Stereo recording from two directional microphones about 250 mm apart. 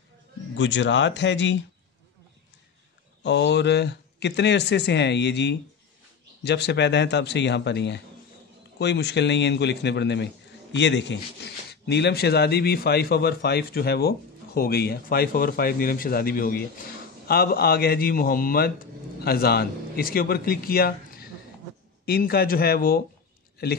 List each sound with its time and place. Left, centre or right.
0.6 s speech: left
3.3 s a man's voice: left